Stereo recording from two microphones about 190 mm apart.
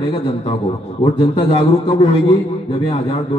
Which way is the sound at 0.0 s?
25° left (ahead or behind).